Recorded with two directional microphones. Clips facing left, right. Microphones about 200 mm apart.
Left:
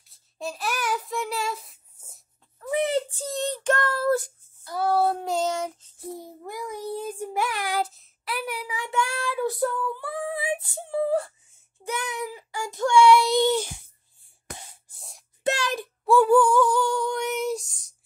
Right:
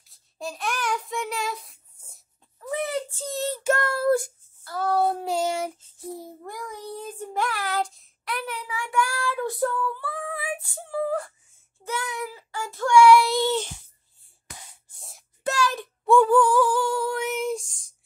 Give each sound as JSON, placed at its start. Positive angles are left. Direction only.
{"t": 0.0, "sound": "child singing", "side_deg": 0}
{"t": 2.7, "sound": "a sound", "side_deg": 20}
{"t": 3.3, "sound": "child singing", "side_deg": -5}
{"t": 4.6, "sound": "child singing", "side_deg": 10}
{"t": 5.2, "sound": "child singing", "side_deg": -10}
{"t": 9.3, "sound": "child singing", "side_deg": 5}
{"t": 9.8, "sound": "female singing", "side_deg": 15}
{"t": 11.8, "sound": "child singing", "side_deg": 20}
{"t": 15.0, "sound": "wail", "side_deg": 0}
{"t": 15.4, "sound": "speech", "side_deg": 25}
{"t": 15.8, "sound": "child singing", "side_deg": 5}